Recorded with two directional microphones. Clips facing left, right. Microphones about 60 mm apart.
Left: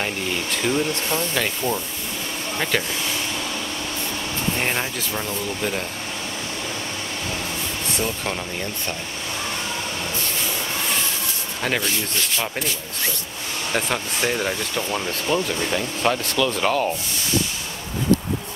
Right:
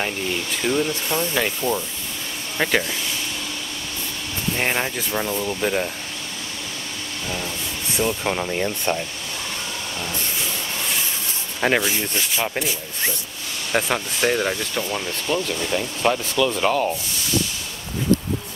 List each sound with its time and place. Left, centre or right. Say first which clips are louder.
0.7 s speech: right 1 dB; centre
4.6 s speech: right 5 dB; centre
8.0 s speech: right 5 dB; centre
8.4 s speech: right 5 dB; right
11.6 s speech: right 5 dB; right
13.7 s speech: right 2 dB; centre
14.8 s speech: left 1 dB; centre